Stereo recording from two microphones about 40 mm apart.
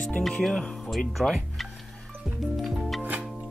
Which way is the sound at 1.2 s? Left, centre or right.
Centre.